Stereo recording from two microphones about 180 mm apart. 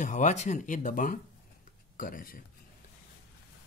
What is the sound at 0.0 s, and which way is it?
Speech, 45° left (ahead or behind).